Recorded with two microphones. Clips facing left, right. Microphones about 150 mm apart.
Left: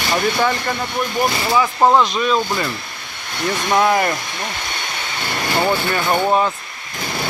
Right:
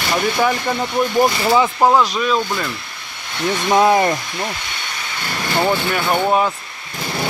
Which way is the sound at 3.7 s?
25° right (ahead or behind).